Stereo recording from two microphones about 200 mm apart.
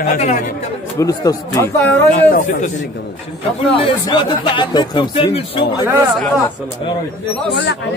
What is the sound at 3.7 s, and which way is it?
Speech, 25° left (ahead or behind).